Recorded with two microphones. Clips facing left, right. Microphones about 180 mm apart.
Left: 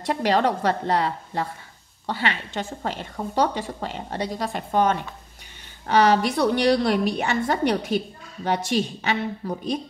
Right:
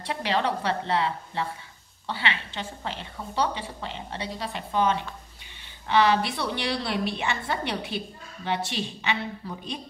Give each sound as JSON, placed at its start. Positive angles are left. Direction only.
{"t": 0.0, "sound": "a woman's voice", "side_deg": 45}